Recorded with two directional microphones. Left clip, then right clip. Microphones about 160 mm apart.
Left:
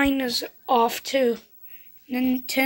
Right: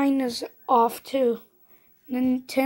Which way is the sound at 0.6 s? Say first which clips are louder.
Right 1 dB; centre (ahead or behind).